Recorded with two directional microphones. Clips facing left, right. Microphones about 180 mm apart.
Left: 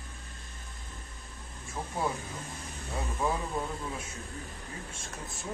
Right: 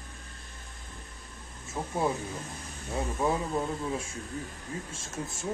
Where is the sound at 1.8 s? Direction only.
20° right (ahead or behind).